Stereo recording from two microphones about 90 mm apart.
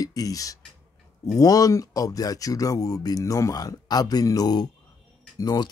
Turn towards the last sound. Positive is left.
turn(degrees=45)  # may be behind; listen again after turning